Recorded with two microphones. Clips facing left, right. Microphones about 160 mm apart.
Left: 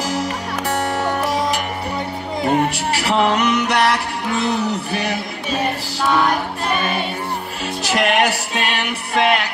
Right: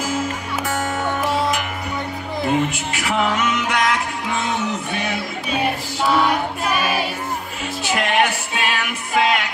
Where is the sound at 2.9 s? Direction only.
35° left (ahead or behind).